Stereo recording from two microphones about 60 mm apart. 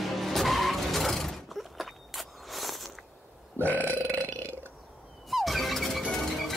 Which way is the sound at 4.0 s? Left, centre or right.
Right.